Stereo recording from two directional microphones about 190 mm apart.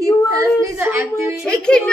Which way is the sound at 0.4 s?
15° right (ahead or behind).